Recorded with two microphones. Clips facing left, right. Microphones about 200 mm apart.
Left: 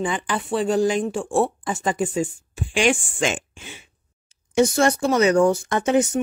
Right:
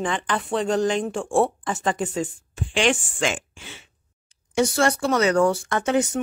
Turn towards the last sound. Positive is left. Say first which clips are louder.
# left 2 dB
turn(degrees=20)  # may be behind; listen again after turning